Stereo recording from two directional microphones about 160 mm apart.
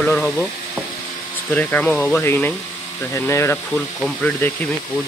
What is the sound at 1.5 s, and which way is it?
Speech, 10° left (ahead or behind).